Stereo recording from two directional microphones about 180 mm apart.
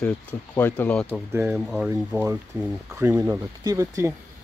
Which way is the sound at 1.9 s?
15° right (ahead or behind).